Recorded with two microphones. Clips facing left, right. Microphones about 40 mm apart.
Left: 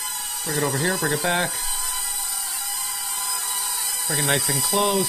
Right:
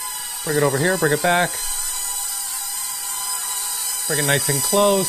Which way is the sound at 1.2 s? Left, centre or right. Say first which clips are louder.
Right 4 dB; centre.